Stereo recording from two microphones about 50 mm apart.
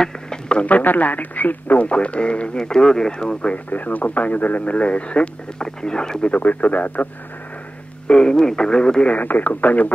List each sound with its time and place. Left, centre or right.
0.0 s a sound: centre
0.7 s speech: left; by 3.5 s centre
3.5 s speech: left; by 6.3 s centre
6.3 s speech: left
8.1 s speech: centre
9.1 s speech: left